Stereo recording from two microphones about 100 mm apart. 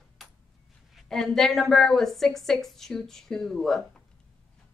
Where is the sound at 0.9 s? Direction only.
Centre (ahead or behind).